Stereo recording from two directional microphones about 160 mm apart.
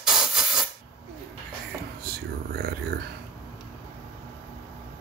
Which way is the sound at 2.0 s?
75° right (ahead or behind).